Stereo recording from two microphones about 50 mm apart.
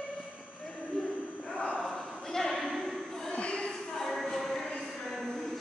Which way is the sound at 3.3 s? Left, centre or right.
Left.